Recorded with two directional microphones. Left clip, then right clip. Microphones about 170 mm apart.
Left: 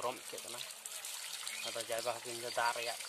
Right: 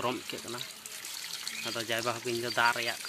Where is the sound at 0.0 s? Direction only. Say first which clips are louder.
Right 7 dB; 5° right (ahead or behind).